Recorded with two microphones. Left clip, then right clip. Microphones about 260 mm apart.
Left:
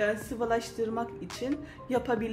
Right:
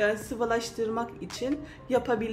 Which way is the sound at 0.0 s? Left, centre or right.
Centre.